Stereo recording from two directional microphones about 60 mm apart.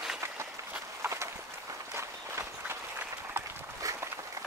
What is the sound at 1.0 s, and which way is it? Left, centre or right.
Walk, right.